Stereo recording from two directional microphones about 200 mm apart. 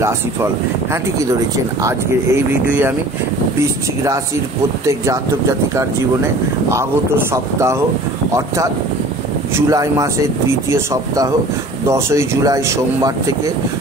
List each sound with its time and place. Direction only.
1.8 s speech: 15° right (ahead or behind)
4.8 s speech: 15° right (ahead or behind)
8.3 s speech: 15° right (ahead or behind)